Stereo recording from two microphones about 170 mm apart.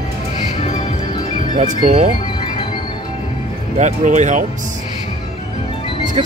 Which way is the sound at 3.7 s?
45° right (ahead or behind).